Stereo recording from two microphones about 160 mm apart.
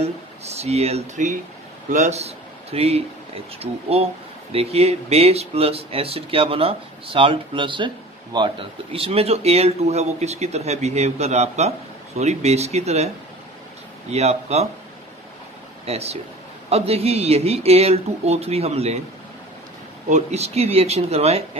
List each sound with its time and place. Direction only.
0.0 s a man's voice: 40° right (ahead or behind)
14.1 s a man's voice: 40° right (ahead or behind)
15.8 s a man's voice: 40° right (ahead or behind)
20.1 s a man's voice: 45° right (ahead or behind)